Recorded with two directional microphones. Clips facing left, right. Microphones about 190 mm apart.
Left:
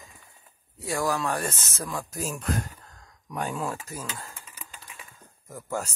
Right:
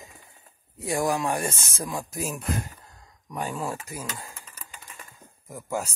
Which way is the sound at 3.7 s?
15° right (ahead or behind).